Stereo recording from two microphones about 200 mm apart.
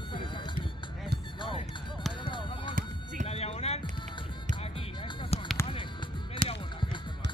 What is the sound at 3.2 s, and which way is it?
Music, 30° left (ahead or behind).